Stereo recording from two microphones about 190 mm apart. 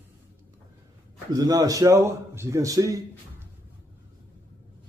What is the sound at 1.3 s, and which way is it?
Speech, 20° right (ahead or behind).